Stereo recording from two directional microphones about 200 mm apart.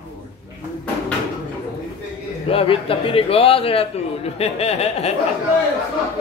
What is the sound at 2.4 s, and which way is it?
A man's voice, 30° left (ahead or behind).